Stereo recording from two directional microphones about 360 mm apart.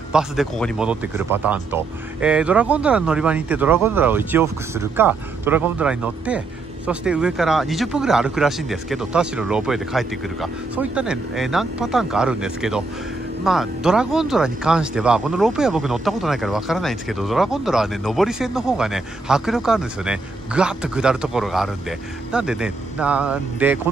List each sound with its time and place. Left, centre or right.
0.1 s speech: centre